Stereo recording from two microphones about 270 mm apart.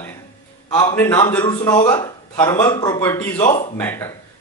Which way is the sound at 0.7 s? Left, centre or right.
Centre.